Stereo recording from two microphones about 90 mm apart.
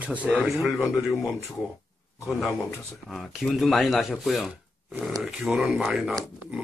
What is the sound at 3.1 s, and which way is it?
Speech, centre (ahead or behind).